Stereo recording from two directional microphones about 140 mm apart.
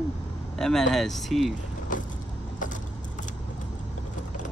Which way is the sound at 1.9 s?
70° left (ahead or behind).